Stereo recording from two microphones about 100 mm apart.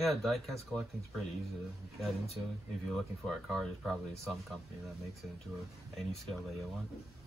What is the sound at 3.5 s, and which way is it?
Speech, 5° left (ahead or behind).